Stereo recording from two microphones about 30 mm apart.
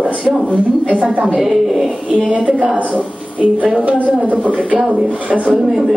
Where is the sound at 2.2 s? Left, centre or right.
Right.